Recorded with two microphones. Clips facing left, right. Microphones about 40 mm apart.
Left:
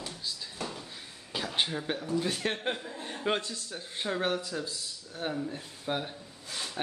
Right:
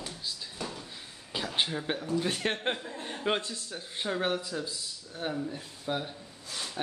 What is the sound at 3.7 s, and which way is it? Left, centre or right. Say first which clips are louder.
Speech: even; centre.